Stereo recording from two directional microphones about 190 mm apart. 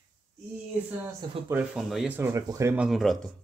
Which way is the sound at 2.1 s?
15° right (ahead or behind).